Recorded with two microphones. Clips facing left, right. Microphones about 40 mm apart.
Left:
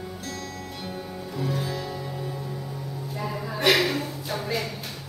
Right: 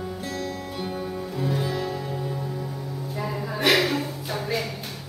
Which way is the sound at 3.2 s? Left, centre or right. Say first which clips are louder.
Even; centre.